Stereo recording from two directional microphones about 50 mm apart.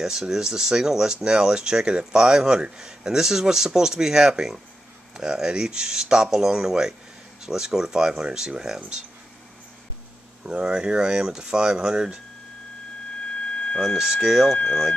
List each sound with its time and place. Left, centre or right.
0.0 s speech: centre
10.4 s speech: centre
13.5 s a sound: left
13.9 s speech: centre
14.7 s speech: centre